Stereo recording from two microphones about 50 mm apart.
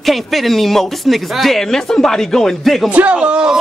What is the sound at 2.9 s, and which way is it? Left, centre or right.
Speech, right.